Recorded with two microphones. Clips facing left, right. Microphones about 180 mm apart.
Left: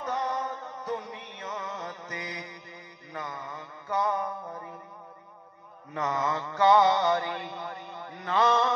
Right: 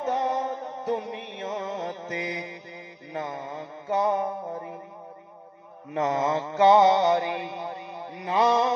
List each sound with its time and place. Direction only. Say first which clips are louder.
0.0 s music: right 5 dB; 25° right (ahead or behind)
3.1 s mantra: right 5 dB; 25° right (ahead or behind)
5.9 s mantra: right 5 dB; 25° right (ahead or behind)